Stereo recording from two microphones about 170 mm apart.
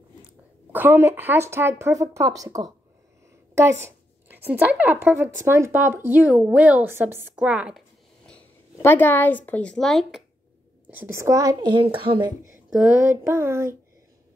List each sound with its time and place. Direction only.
0.7 s speech: 10° right (ahead or behind)
3.8 s a sound: 10° right (ahead or behind)
5.0 s speech: 10° right (ahead or behind)
8.3 s speech: 10° left (ahead or behind)
10.9 s a child's voice: 15° right (ahead or behind)
12.6 s speech: 10° right (ahead or behind)